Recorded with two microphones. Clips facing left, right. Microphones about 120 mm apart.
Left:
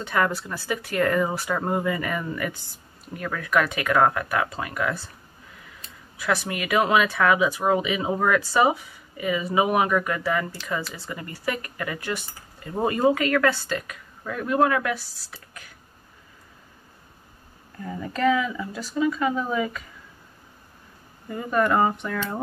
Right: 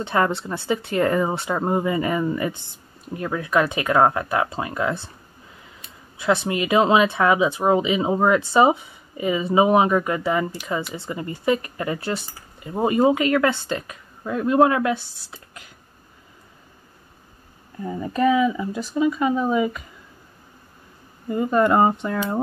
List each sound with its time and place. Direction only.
0.0 s speech: 25° right (ahead or behind)
6.1 s speech: 25° right (ahead or behind)
12.6 s speech: 15° right (ahead or behind)
17.8 s speech: 20° right (ahead or behind)
21.3 s speech: 25° right (ahead or behind)